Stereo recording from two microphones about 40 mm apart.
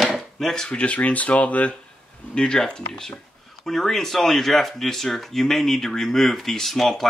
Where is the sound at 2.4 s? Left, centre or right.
Centre.